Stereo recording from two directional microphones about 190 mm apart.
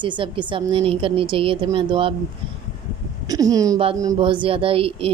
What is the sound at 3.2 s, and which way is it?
A woman's voice, 20° right (ahead or behind).